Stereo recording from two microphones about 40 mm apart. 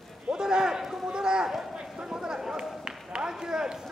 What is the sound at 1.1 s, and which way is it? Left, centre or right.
Speech, centre.